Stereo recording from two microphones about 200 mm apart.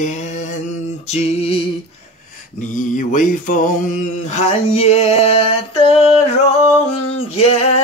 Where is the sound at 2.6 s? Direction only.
40° left (ahead or behind).